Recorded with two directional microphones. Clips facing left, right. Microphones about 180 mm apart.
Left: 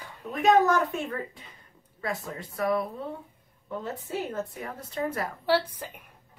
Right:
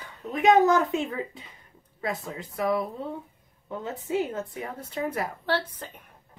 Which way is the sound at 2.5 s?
20° right (ahead or behind).